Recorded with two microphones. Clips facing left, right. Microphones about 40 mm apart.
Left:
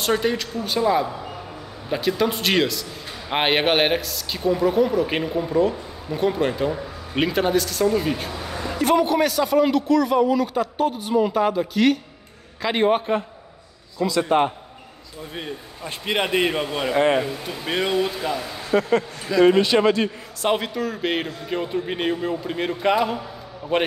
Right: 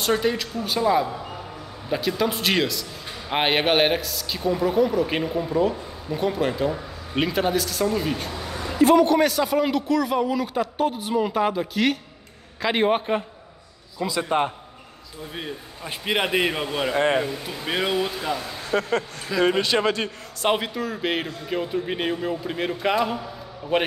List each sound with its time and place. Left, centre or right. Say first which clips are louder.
0.0 s a man's voice: left 1 dB; centre
15.3 s a man's voice: left 1 dB; centre
16.9 s a man's voice: left 3 dB; centre
18.7 s speech: left 4 dB; centre
19.3 s a man's voice: left 5 dB; centre
19.6 s speech: left 4 dB; centre
20.5 s a man's voice: left 2 dB; centre